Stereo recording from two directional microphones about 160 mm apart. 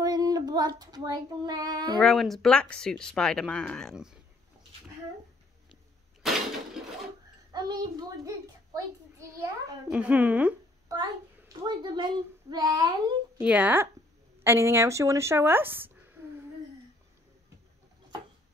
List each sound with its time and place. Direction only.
0.0 s child singing: 20° right (ahead or behind)
2.0 s speech: centre (ahead or behind)
6.2 s a sound: centre (ahead or behind)
7.5 s a child's voice: 25° right (ahead or behind)
9.8 s a woman's voice: 5° right (ahead or behind)
10.9 s a child's voice: 25° right (ahead or behind)
13.4 s a woman's voice: 10° right (ahead or behind)